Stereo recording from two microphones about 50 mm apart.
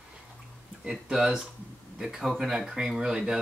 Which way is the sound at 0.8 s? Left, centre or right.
Centre.